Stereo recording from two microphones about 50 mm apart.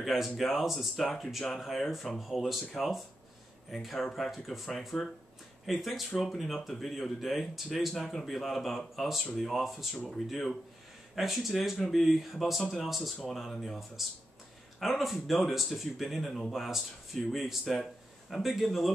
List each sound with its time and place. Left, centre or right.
0.0 s speech: centre